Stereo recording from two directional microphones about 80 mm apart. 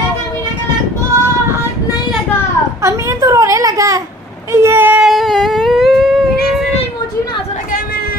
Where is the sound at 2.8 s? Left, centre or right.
Right.